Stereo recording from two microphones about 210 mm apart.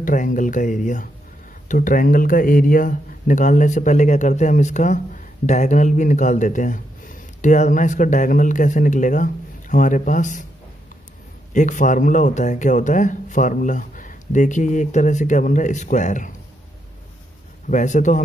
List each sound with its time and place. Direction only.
0.0 s speech: 40° left (ahead or behind)
11.5 s speech: 35° left (ahead or behind)
17.6 s speech: 35° left (ahead or behind)